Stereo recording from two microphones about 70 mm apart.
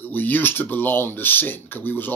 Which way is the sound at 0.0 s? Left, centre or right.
Left.